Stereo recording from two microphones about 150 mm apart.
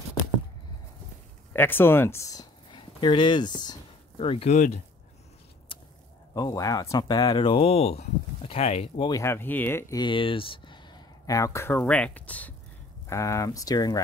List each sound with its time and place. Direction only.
1.5 s speech: 15° left (ahead or behind); by 3.7 s 30° left (ahead or behind)
4.2 s speech: 40° left (ahead or behind)
5.7 s a sound: 35° left (ahead or behind)
6.3 s speech: 25° left (ahead or behind); by 9.1 s 40° left (ahead or behind)
9.1 s speech: 15° left (ahead or behind)
9.9 s speech: 35° left (ahead or behind)